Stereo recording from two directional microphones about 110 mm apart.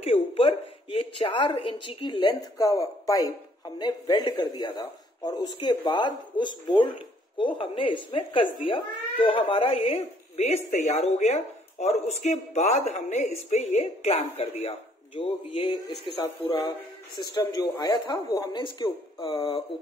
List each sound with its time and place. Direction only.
0.0 s speech: 60° left (ahead or behind)
2.5 s speech: 30° left (ahead or behind)
3.7 s speech: 45° left (ahead or behind); by 16.0 s 60° left (ahead or behind)
17.2 s speech: 35° left (ahead or behind)
18.6 s speech: 50° left (ahead or behind)